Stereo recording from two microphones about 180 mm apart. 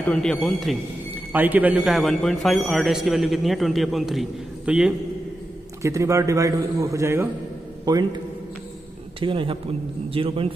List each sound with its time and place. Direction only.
0.0 s a man's voice: 5° left (ahead or behind)
1.3 s a man's voice: 10° right (ahead or behind)
5.8 s a man's voice: 15° right (ahead or behind)
9.2 s a man's voice: 30° right (ahead or behind)